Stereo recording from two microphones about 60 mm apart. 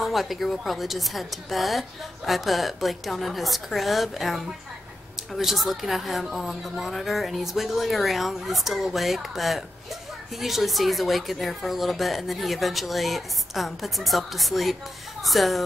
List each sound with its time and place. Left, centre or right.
0.0 s speech: centre